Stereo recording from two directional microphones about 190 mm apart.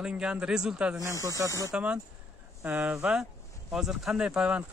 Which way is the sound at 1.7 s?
5° right (ahead or behind).